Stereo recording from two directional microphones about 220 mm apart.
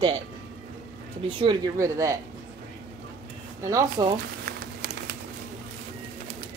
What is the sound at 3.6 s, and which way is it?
Speech, 15° right (ahead or behind).